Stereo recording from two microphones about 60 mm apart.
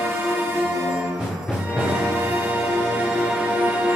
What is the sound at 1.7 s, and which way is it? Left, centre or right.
Music, right.